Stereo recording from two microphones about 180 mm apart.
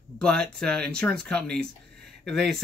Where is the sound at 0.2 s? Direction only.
5° left (ahead or behind).